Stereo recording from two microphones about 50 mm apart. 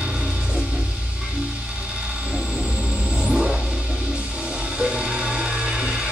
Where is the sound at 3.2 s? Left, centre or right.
Centre.